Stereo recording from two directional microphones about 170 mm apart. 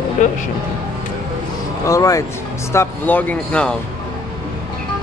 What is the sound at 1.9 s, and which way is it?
Speech, 20° left (ahead or behind).